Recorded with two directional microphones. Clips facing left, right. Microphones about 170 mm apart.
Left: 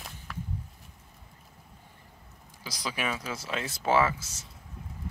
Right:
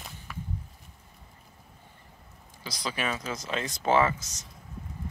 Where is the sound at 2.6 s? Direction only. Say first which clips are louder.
Right 1 dB; 10° left (ahead or behind).